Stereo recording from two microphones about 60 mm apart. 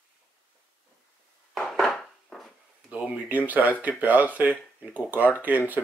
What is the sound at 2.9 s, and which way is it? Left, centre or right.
Speech, right.